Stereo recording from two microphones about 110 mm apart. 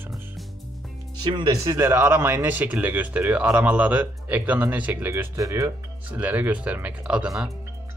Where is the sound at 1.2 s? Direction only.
45° right (ahead or behind).